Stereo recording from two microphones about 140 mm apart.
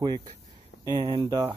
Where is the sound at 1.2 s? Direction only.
20° right (ahead or behind).